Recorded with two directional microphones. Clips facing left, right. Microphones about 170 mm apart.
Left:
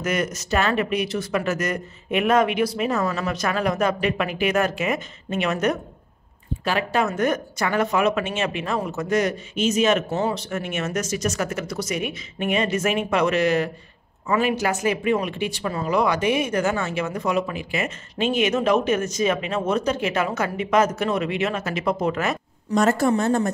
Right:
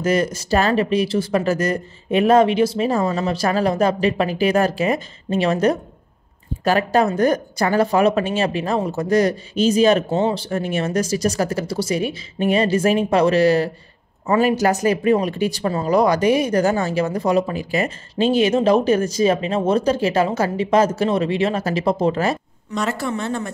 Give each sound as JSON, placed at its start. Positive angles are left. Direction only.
{"t": 0.0, "sound": "speech", "side_deg": -30}
{"t": 22.7, "sound": "speech", "side_deg": 45}